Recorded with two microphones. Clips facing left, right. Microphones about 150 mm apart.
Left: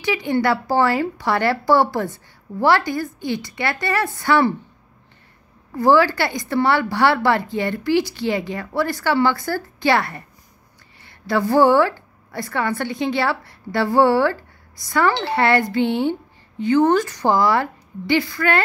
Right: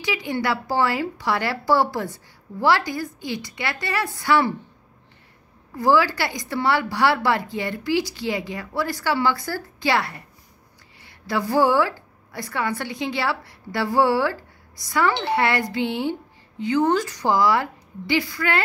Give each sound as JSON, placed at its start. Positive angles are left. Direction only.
{"t": 0.0, "sound": "a woman's voice", "side_deg": 55}
{"t": 5.8, "sound": "a woman's voice", "side_deg": 55}